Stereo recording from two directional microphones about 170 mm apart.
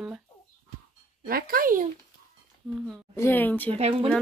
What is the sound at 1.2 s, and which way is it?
Speech, 60° right (ahead or behind).